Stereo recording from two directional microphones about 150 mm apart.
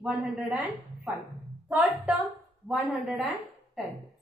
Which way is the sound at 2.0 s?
Centre (ahead or behind).